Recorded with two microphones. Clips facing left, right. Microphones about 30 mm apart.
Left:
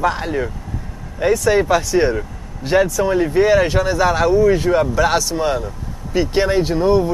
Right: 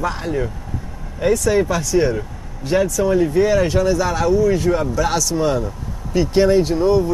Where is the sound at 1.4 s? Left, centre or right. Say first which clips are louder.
Left 3 dB; left.